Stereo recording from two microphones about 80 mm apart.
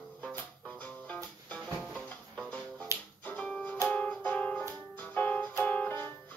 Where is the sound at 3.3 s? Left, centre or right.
Centre.